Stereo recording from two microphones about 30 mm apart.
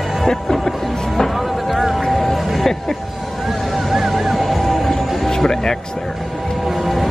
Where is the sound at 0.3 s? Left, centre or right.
Centre.